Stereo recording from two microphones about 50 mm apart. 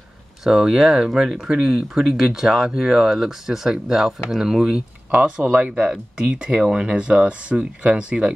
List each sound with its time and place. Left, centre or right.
0.4 s speech: centre
5.4 s speech: right
5.9 s speech: centre